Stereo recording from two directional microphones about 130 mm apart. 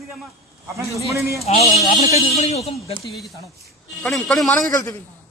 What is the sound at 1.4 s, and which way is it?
Speech, 55° left (ahead or behind).